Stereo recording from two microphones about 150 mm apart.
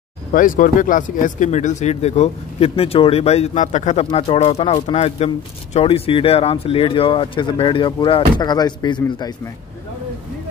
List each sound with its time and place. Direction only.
0.3 s speech: 65° left (ahead or behind); by 9.3 s 30° left (ahead or behind)